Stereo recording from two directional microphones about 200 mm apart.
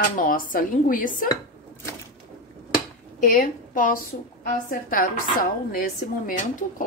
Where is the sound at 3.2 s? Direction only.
40° left (ahead or behind).